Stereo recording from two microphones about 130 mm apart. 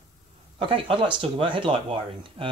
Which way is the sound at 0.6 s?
45° right (ahead or behind).